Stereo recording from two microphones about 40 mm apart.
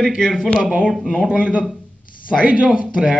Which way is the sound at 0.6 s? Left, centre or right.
Right.